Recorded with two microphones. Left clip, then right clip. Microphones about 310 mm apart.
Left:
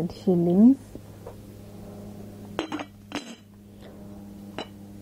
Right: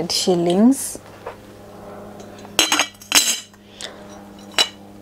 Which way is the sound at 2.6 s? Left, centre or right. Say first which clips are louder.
Right 15 dB; centre.